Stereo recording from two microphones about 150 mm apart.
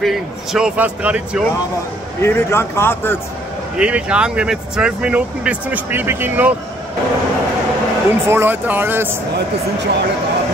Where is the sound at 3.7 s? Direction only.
10° right (ahead or behind).